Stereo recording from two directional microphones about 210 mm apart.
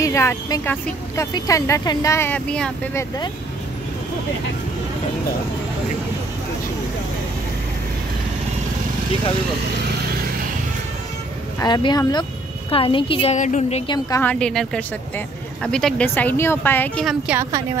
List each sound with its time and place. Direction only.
0.0 s speech: 15° left (ahead or behind)
11.6 s a woman's voice: 20° left (ahead or behind)
13.9 s speech: 15° left (ahead or behind)
14.3 s speech: 5° left (ahead or behind)
17.4 s a woman's voice: 15° right (ahead or behind)